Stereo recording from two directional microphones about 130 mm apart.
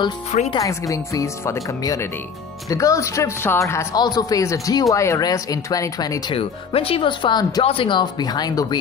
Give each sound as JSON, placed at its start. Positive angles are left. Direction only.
{"t": 0.6, "sound": "speech", "side_deg": 25}
{"t": 6.3, "sound": "speech", "side_deg": 45}